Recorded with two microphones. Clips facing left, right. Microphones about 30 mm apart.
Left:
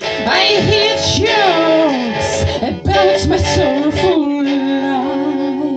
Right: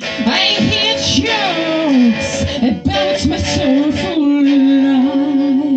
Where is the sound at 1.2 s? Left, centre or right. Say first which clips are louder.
Left 4 dB; left.